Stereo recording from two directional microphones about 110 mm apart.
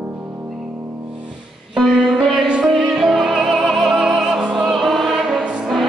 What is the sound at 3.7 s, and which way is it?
Opera, centre (ahead or behind).